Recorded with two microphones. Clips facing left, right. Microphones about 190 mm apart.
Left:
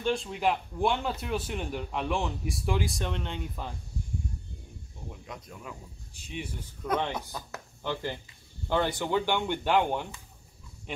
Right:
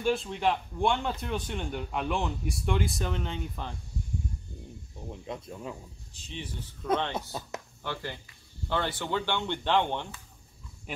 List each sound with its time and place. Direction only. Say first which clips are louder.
0.0 s speech: right 1 dB; centre (ahead or behind)
5.2 s speech: right 7 dB; 25° right (ahead or behind)
6.1 s speech: left 2 dB; 10° left (ahead or behind)
7.3 s speech: right 2 dB; 25° right (ahead or behind)
7.8 s speech: left 5 dB; 15° left (ahead or behind)